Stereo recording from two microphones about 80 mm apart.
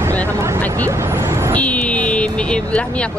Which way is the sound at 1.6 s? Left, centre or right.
Centre.